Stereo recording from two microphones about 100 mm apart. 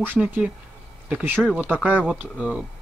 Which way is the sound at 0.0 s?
15° right (ahead or behind).